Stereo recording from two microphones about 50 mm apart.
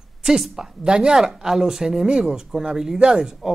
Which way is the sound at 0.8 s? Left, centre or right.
Centre.